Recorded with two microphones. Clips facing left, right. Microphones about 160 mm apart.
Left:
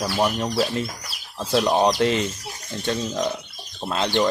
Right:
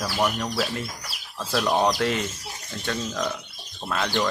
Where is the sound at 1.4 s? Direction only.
15° left (ahead or behind).